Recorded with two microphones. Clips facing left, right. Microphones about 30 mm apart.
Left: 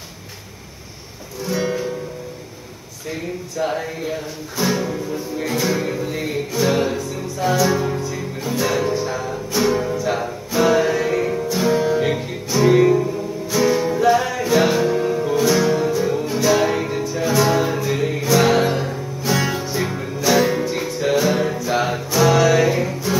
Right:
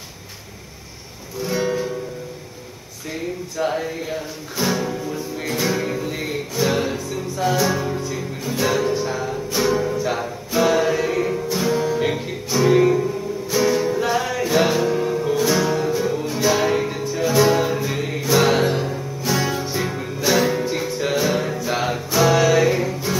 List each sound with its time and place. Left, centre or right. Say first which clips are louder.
1.4 s music: even; centre
3.1 s speech: even; centre
5.6 s music: even; centre
8.0 s music: left 1 dB; centre
11.7 s music: left 4 dB; centre
12.0 s music: left 1 dB; centre